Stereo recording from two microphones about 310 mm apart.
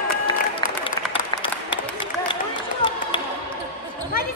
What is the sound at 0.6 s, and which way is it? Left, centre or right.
Applause, centre.